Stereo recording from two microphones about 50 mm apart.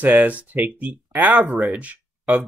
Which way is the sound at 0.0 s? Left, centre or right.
Right.